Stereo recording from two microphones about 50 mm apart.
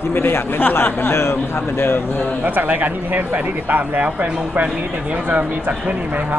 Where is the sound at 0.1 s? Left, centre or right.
Left.